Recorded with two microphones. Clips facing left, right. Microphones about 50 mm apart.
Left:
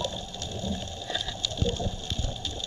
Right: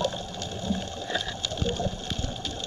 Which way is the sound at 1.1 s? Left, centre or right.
Right.